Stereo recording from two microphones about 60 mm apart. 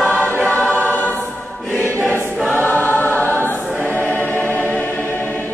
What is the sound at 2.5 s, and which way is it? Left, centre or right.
Choir, left.